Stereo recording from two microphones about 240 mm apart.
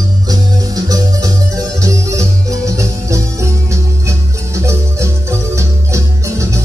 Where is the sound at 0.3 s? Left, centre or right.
Centre.